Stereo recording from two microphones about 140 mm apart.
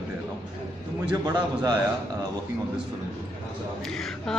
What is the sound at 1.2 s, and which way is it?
Speech, 30° right (ahead or behind).